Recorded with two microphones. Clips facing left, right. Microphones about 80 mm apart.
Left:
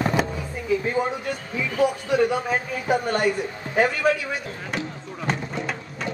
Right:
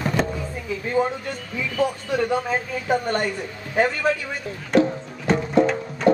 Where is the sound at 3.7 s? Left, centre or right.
Centre.